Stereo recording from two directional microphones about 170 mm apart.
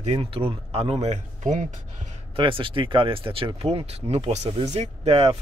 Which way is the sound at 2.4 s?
30° right (ahead or behind).